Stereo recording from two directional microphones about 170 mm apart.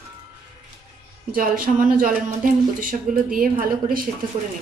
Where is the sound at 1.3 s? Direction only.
55° right (ahead or behind).